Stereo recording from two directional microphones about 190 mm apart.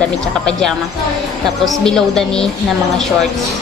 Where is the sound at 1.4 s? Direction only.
Centre (ahead or behind).